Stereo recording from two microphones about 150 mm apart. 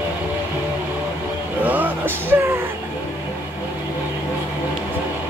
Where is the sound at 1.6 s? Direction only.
10° right (ahead or behind).